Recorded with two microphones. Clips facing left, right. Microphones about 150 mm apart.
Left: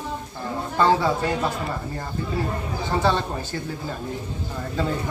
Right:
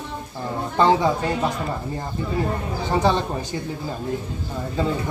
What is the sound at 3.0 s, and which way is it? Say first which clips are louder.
Speech: right 2 dB; 15° right (ahead or behind).